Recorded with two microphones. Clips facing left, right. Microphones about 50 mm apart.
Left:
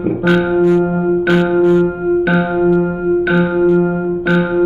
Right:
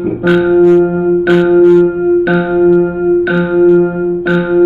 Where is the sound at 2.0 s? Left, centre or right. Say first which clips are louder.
Right 4 dB; centre.